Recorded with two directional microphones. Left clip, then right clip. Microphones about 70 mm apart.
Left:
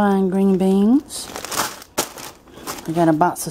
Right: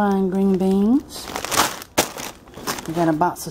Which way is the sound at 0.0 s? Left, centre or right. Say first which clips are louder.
Left 2 dB; left.